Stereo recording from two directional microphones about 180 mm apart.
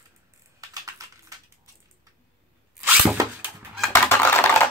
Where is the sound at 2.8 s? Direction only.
10° right (ahead or behind).